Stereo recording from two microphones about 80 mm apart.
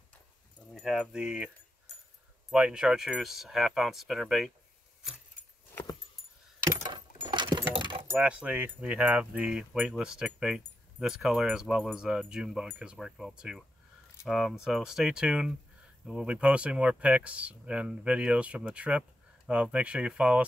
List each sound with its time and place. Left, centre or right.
0.7 s speech: centre
6.9 s a sound: right
8.2 s speech: centre